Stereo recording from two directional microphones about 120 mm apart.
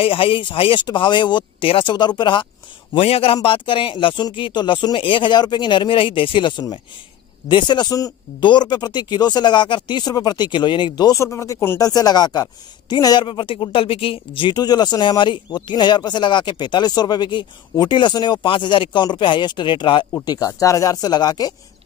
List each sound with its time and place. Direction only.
0.0 s speech: 50° left (ahead or behind)
2.9 s speech: 55° left (ahead or behind); by 11.8 s 20° left (ahead or behind)
11.8 s speech: 30° left (ahead or behind)
20.2 s speech: 30° left (ahead or behind)